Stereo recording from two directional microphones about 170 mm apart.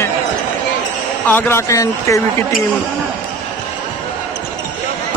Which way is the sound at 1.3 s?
15° left (ahead or behind).